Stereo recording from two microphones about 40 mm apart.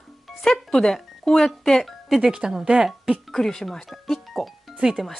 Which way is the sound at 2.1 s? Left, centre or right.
Centre.